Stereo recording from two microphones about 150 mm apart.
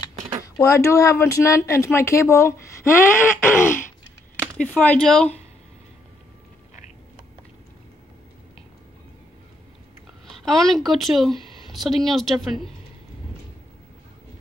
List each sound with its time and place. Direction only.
0.6 s speech: 20° left (ahead or behind)
10.2 s a woman's voice: centre (ahead or behind)